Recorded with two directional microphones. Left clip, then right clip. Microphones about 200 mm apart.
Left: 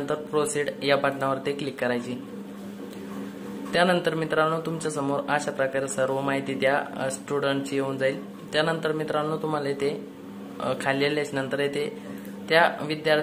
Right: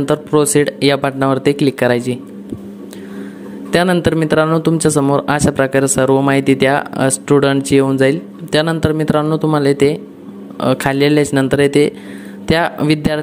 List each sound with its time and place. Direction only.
0.0 s speech: 40° right (ahead or behind)
3.7 s speech: 45° right (ahead or behind)